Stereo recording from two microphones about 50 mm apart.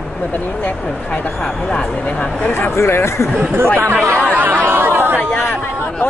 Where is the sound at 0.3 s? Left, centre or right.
Left.